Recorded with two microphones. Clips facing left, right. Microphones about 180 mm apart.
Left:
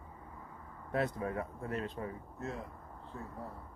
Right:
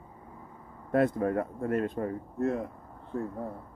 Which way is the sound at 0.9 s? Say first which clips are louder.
Right 9 dB; 50° right (ahead or behind).